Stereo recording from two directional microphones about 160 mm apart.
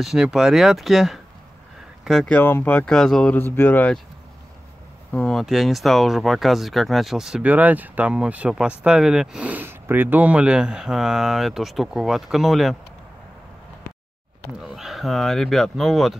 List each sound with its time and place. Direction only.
0.0 s speech: 5° right (ahead or behind)
5.1 s speech: 5° left (ahead or behind)
14.6 s speech: centre (ahead or behind)